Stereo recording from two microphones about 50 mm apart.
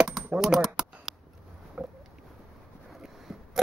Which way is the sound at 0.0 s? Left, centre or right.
Centre.